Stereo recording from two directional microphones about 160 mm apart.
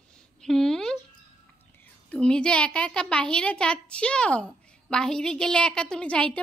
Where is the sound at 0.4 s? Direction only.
5° left (ahead or behind).